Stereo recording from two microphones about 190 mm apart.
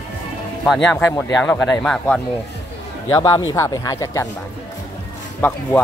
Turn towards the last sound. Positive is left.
turn(degrees=10)  # may be behind; listen again after turning